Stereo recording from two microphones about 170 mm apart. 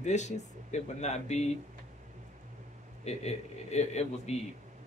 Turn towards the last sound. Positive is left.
turn(degrees=40)  # may be behind; listen again after turning